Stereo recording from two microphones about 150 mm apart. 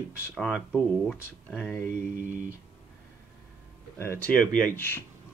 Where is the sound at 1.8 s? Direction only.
65° right (ahead or behind).